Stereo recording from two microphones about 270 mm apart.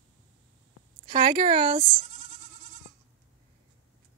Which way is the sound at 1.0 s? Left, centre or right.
Right.